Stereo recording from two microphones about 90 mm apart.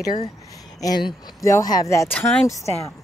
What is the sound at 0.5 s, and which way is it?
Speech, 40° left (ahead or behind).